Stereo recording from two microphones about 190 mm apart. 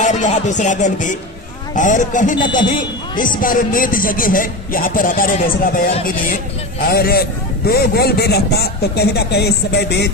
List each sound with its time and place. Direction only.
0.0 s a man's voice: 40° left (ahead or behind); by 10.1 s 60° left (ahead or behind)